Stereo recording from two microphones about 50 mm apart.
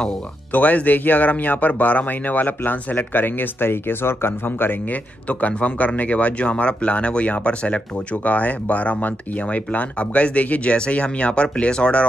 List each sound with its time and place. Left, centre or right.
0.5 s speech: left
5.3 s speech: left